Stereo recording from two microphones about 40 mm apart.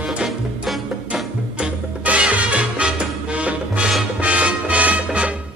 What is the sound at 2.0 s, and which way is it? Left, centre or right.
Music, right.